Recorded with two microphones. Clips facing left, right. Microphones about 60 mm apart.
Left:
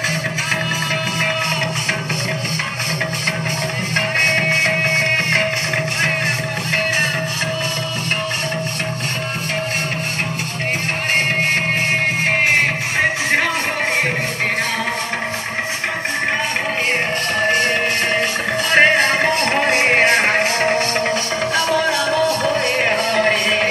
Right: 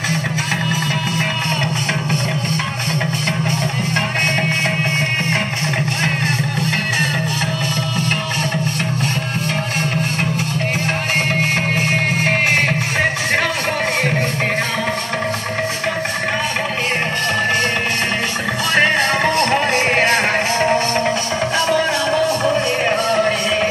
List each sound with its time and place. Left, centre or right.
18.7 s music: left
20.5 s music: left
23.0 s music: left